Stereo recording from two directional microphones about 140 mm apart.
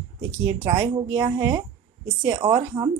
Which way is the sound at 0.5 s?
25° right (ahead or behind).